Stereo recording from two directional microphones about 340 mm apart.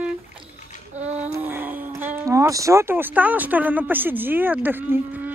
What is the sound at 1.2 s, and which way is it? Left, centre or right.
Speech, centre.